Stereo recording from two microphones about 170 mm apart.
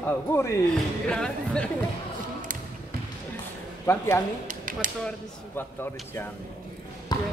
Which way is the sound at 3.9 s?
15° left (ahead or behind).